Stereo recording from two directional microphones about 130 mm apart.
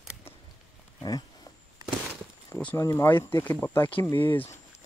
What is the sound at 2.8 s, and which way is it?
Speech, 20° left (ahead or behind).